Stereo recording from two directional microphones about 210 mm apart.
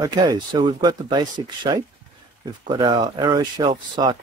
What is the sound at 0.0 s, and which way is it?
Speech, 20° right (ahead or behind).